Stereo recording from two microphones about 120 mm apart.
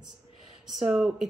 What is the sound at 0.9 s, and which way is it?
Speech, centre (ahead or behind).